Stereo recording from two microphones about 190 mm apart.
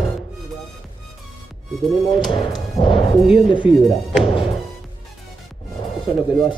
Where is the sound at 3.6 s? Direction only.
5° right (ahead or behind).